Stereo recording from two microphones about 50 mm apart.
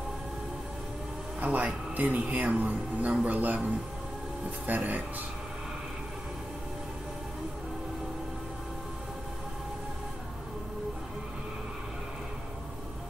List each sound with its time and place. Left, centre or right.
1.4 s speech: right